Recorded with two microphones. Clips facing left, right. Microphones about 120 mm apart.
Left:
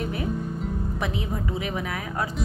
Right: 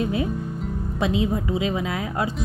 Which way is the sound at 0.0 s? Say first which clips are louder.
Right 5 dB; 20° right (ahead or behind).